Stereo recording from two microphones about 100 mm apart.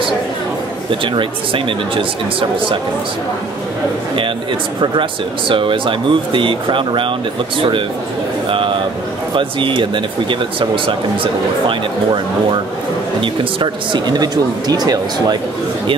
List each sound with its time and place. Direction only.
1.0 s speech: 60° right (ahead or behind)
5.5 s speech: 55° right (ahead or behind)
8.5 s a sound: 55° right (ahead or behind)
9.3 s speech: 55° right (ahead or behind)
11.6 s speech: 55° right (ahead or behind)